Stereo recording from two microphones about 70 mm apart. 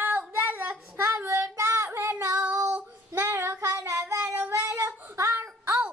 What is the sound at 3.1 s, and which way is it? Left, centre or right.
Child singing, right.